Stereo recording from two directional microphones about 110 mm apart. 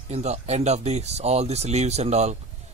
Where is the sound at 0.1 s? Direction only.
75° right (ahead or behind).